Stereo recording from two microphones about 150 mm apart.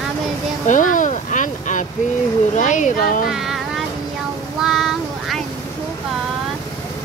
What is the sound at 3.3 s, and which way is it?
Speech, centre (ahead or behind).